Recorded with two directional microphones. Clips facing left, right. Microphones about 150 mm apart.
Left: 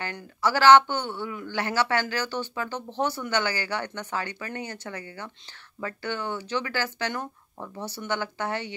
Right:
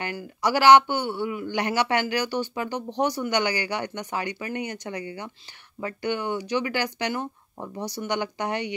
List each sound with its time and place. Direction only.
0.0 s speech: 15° right (ahead or behind)